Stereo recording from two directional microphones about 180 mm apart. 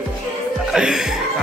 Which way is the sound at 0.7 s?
5° right (ahead or behind).